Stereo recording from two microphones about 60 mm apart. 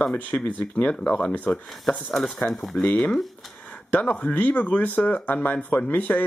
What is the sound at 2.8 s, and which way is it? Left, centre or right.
Speech, left.